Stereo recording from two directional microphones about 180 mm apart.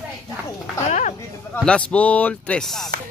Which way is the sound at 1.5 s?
5° left (ahead or behind).